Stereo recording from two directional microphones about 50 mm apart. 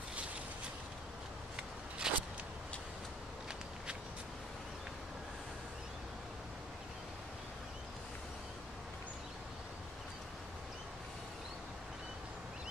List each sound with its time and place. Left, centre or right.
1.6 s biting: centre